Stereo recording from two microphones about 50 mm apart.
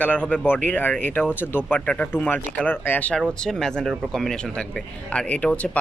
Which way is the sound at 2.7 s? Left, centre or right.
Left.